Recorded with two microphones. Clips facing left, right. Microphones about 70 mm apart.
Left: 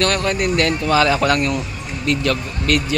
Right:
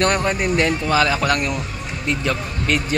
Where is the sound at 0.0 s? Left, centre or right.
Right.